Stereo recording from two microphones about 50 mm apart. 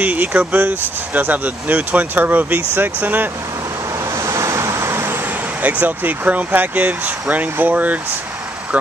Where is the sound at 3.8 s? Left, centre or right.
Right.